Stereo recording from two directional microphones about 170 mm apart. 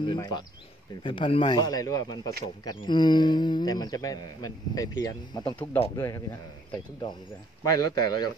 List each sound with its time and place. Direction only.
0.0 s a man's voice: 25° left (ahead or behind)
5.9 s a man's voice: 15° left (ahead or behind)
7.6 s a man's voice: 20° left (ahead or behind)